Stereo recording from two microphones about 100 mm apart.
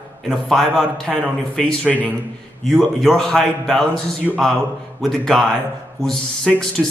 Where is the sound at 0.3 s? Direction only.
Centre (ahead or behind).